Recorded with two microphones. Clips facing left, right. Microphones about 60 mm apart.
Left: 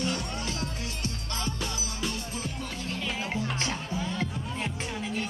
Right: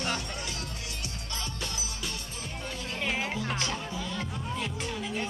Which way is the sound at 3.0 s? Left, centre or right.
Right.